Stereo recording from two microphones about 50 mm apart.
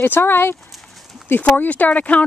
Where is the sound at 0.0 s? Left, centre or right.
Left.